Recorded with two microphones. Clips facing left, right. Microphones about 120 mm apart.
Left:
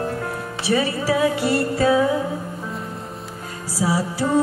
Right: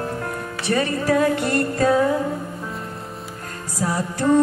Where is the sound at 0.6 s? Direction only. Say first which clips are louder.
Left 1 dB; 5° left (ahead or behind).